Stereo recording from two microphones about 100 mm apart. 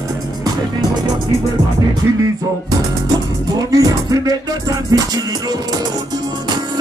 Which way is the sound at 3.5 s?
35° right (ahead or behind).